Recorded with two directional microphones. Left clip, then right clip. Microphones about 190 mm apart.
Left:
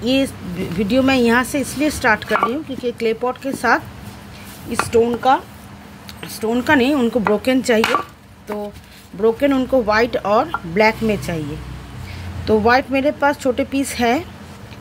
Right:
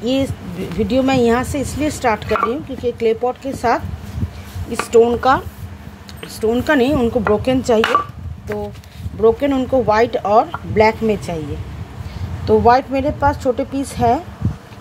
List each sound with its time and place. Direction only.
0.0 s speech: 5° left (ahead or behind)
5.0 s speech: 15° right (ahead or behind)
6.2 s speech: centre (ahead or behind)
9.2 s speech: centre (ahead or behind)
12.4 s speech: 10° left (ahead or behind)